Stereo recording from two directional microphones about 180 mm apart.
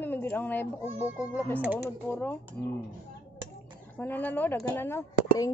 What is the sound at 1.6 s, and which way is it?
Speech, 10° right (ahead or behind).